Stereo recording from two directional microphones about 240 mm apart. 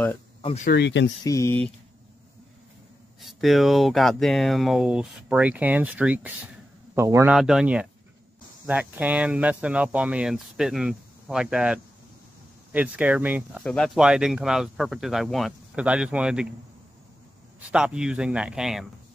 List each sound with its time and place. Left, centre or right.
0.7 s speech: left
1.2 s speech: centre
3.2 s speech: centre
17.6 s speech: centre